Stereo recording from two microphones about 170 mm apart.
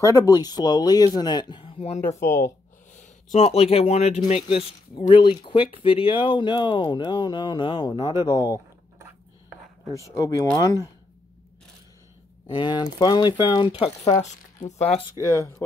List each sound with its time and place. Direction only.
0.0 s speech: 20° left (ahead or behind)
2.0 s speech: 15° left (ahead or behind)
2.9 s speech: 45° left (ahead or behind); by 8.2 s 25° left (ahead or behind)
8.4 s a sound: 15° right (ahead or behind)
10.1 s speech: 20° left (ahead or behind)
12.4 s speech: 25° left (ahead or behind)